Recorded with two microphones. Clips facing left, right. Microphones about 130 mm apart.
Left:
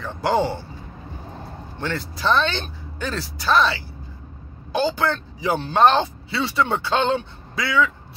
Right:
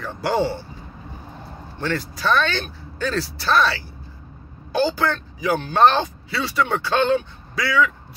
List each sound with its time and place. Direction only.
0.2 s speech: 20° left (ahead or behind)
1.8 s speech: 25° left (ahead or behind)